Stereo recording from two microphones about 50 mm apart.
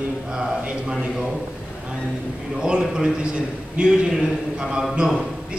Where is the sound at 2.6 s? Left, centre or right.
Centre.